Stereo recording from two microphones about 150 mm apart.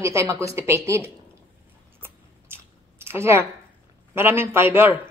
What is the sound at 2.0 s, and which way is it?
Chewing, 15° right (ahead or behind).